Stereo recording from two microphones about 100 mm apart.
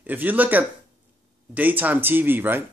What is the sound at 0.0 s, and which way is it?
Speech, 20° right (ahead or behind).